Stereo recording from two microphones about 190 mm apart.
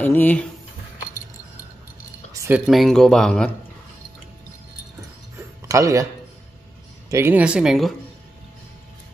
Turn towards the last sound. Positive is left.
turn(degrees=0)  # may be behind; listen again after turning